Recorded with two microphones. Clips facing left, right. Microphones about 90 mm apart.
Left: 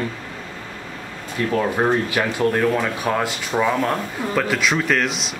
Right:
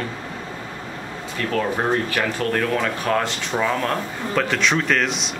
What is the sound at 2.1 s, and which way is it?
Speech, 15° left (ahead or behind).